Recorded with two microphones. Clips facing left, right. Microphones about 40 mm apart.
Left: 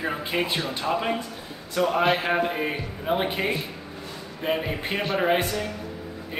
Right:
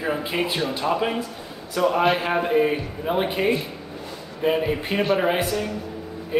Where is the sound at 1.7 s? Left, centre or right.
Centre.